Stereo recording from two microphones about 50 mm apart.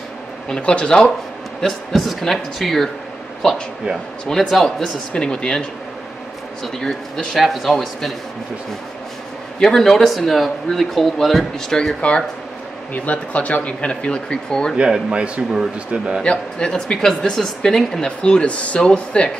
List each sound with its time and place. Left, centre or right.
0.6 s speech: left
1.6 s speech: centre
4.3 s speech: centre
5.1 s speech: centre
6.6 s speech: centre
9.6 s speech: centre
12.9 s speech: left
14.8 s speech: centre
16.2 s speech: centre